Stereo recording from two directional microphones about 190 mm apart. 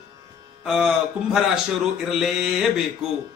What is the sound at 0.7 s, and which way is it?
A man's voice, 5° right (ahead or behind).